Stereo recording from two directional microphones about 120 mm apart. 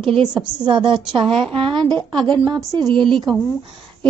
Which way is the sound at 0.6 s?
40° right (ahead or behind).